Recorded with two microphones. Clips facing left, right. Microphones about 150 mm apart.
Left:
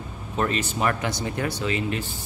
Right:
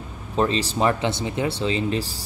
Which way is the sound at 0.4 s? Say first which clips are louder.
Right 4 dB; 30° right (ahead or behind).